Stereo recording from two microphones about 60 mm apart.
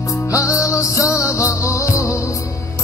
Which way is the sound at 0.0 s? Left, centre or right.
Left.